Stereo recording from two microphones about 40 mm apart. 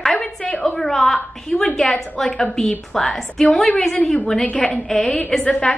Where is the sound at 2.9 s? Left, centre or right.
Centre.